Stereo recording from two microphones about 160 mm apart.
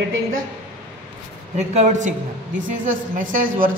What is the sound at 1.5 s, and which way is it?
A woman's voice, 45° right (ahead or behind).